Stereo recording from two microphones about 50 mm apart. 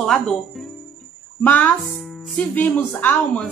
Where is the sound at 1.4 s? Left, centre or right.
Left.